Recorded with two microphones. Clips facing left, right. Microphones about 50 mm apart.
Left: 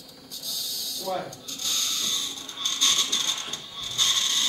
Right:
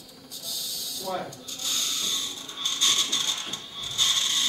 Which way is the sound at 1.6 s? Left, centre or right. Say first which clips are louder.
Left 1 dB; centre.